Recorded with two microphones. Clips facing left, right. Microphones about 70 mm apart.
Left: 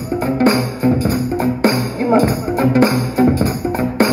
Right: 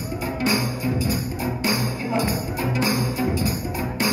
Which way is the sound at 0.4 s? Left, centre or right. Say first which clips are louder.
Left 8 dB; left.